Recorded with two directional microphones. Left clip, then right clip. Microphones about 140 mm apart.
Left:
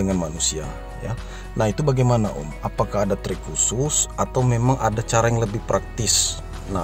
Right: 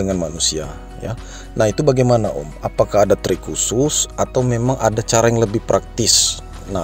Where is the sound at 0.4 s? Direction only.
25° right (ahead or behind).